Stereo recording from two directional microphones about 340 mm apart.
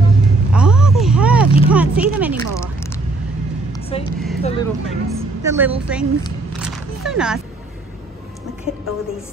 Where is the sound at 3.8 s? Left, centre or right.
Centre.